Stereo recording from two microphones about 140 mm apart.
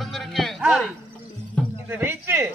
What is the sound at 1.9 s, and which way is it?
Speech, 15° right (ahead or behind).